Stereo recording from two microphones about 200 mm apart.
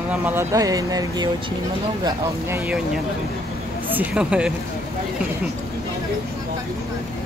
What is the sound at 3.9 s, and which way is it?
Speech, 5° right (ahead or behind).